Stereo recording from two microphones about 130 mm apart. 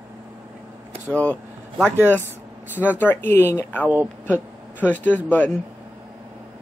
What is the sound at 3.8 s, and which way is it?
Speech, 10° right (ahead or behind).